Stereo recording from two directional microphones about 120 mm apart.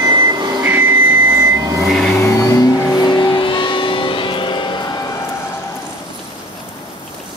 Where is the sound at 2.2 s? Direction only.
25° left (ahead or behind).